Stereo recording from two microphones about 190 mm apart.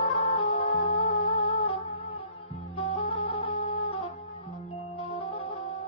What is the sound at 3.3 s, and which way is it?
Music, 25° left (ahead or behind).